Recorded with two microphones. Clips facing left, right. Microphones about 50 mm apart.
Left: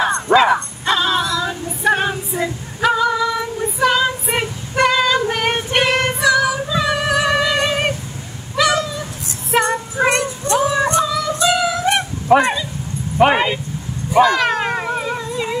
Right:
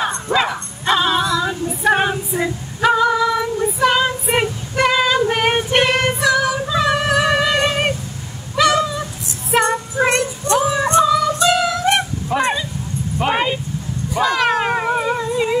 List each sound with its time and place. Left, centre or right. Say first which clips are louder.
0.8 s dog: right 2 dB; centre
1.5 s female singing: right 1 dB; centre
3.9 s a sound: right 1 dB; centre
4.7 s female singing: left 1 dB; centre
8.5 s cat: right 2 dB; centre
9.5 s music: right 1 dB; centre
12.3 s bow-wow: left 7 dB; left
13.2 s a sound: left 7 dB; left
14.2 s cat: right 2 dB; centre